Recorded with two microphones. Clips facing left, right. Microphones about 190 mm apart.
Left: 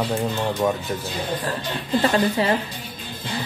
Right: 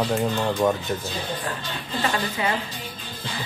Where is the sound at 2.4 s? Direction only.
35° left (ahead or behind).